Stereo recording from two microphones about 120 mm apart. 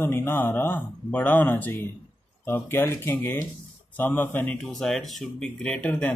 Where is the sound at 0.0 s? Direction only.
15° left (ahead or behind).